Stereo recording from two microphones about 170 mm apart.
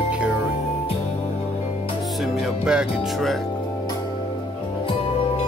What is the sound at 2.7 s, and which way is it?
Music, 5° right (ahead or behind).